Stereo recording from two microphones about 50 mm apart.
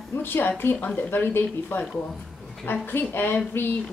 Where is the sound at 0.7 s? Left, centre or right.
Left.